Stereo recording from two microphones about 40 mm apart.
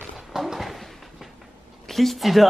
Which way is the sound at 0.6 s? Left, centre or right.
Centre.